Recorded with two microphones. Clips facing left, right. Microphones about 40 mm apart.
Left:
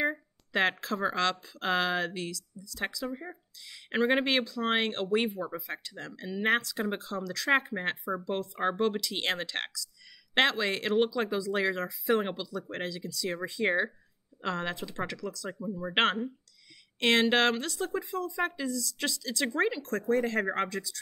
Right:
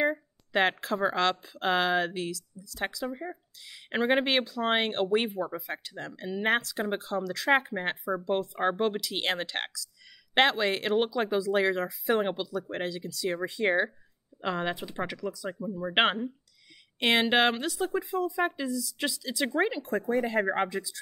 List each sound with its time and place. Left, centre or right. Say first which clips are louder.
0.0 s speech: right 3 dB; centre